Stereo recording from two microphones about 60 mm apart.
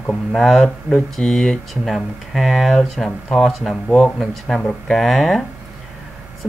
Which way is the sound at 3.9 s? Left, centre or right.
Centre.